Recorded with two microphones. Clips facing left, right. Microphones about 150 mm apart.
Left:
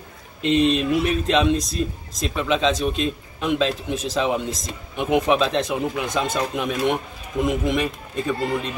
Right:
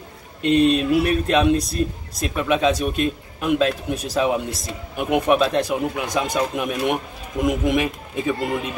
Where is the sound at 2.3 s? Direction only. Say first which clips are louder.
Right 2 dB; 10° right (ahead or behind).